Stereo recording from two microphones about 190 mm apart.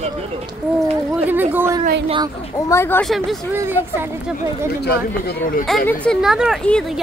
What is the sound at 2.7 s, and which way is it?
Speech, 10° left (ahead or behind).